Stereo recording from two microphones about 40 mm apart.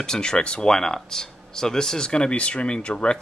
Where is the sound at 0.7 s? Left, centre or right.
Centre.